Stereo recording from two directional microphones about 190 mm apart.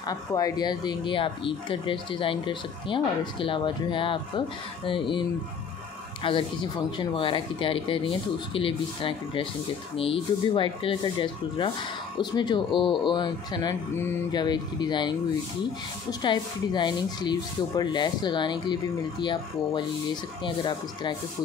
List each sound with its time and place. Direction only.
0.0 s speech: 20° left (ahead or behind)
6.2 s speech: 25° left (ahead or behind)